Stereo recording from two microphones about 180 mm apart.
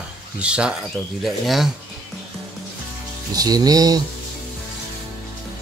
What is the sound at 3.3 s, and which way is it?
Speech, 20° right (ahead or behind).